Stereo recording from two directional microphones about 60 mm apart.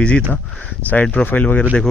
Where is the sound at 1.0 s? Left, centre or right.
Left.